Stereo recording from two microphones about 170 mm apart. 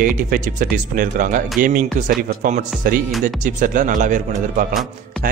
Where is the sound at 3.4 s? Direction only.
50° right (ahead or behind).